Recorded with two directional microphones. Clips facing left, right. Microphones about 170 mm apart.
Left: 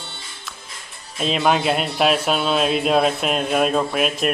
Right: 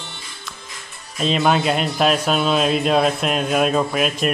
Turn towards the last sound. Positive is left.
turn(degrees=0)  # may be behind; listen again after turning